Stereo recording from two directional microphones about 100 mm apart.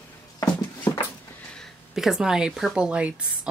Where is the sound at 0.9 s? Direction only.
35° left (ahead or behind).